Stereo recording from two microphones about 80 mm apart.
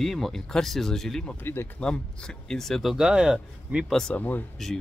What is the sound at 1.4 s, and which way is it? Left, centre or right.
Speech, left.